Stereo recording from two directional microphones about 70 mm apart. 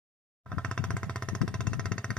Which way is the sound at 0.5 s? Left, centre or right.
Centre.